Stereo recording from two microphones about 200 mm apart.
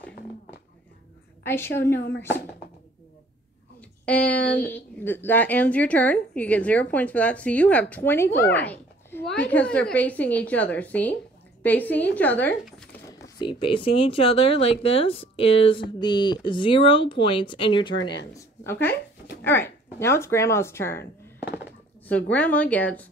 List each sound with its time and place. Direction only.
1.4 s a woman's voice: 10° left (ahead or behind)
2.0 s speech: 60° left (ahead or behind)
4.0 s a woman's voice: 5° left (ahead or behind)
13.2 s speech: 25° left (ahead or behind)
18.3 s a woman's voice: 10° left (ahead or behind)
22.0 s a woman's voice: 5° left (ahead or behind)